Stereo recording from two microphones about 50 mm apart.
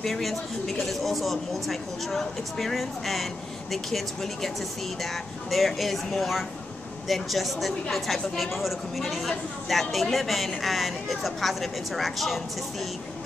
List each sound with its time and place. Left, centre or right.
0.0 s speech: centre